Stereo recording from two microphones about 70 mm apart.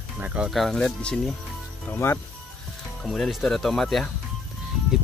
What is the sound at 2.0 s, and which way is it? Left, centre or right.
Speech, left.